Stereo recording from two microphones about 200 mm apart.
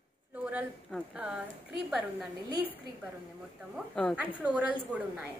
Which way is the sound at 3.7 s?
5° left (ahead or behind).